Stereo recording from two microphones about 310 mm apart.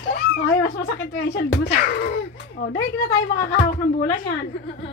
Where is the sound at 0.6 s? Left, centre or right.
Left.